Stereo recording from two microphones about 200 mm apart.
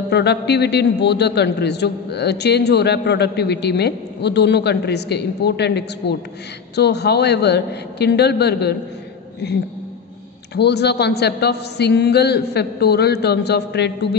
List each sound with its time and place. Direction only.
0.1 s a man's voice: 55° left (ahead or behind)
10.5 s a man's voice: 55° left (ahead or behind)